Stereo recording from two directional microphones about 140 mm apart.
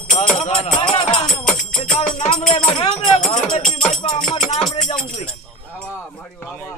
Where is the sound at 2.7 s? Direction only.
35° left (ahead or behind).